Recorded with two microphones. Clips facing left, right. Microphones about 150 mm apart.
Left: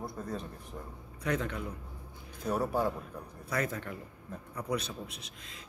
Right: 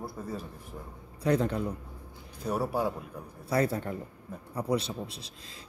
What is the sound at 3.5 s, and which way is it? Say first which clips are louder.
A man's voice: right 6 dB; 30° right (ahead or behind).